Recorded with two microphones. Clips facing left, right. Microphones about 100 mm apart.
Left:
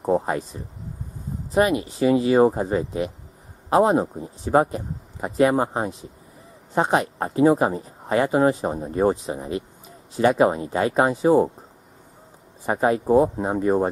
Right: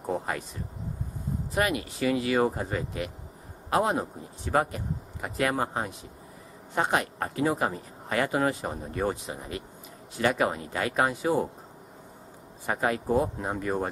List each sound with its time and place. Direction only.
0.0 s speech: 30° left (ahead or behind)
1.5 s speech: 25° left (ahead or behind)
12.6 s speech: 25° left (ahead or behind)